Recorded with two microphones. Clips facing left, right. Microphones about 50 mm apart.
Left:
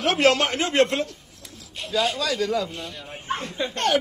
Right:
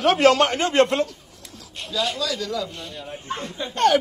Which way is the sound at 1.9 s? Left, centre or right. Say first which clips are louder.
Left 2 dB; left.